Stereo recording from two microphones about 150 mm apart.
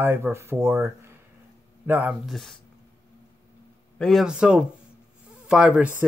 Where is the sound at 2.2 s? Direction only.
Centre (ahead or behind).